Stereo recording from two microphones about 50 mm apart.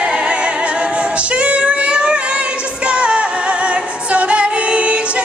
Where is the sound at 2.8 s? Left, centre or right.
Right.